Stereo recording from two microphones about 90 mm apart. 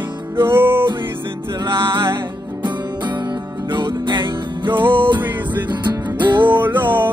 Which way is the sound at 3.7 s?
60° right (ahead or behind).